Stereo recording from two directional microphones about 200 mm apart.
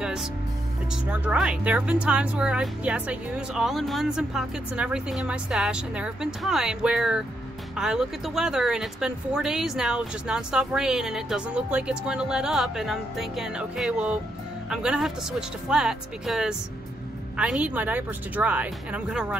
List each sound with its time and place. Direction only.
0.0 s music: 5° right (ahead or behind)
1.1 s speech: 5° right (ahead or behind)